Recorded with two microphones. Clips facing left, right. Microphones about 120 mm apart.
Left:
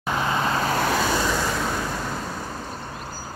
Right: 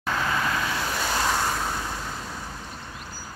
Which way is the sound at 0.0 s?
20° left (ahead or behind).